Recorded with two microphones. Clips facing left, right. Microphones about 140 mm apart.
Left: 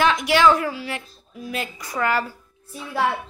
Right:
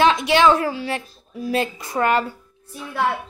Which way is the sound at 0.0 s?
25° right (ahead or behind).